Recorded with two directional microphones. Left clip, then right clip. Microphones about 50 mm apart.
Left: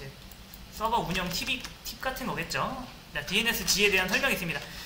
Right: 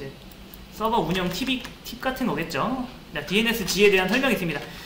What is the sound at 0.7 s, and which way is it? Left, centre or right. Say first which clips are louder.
A man's voice: right 5 dB; left.